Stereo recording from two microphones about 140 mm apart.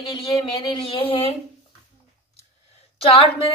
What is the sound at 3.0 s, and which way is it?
Speech, 40° left (ahead or behind).